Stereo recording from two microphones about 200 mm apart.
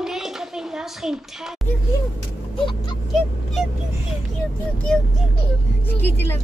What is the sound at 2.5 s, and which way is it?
Speech, 25° left (ahead or behind).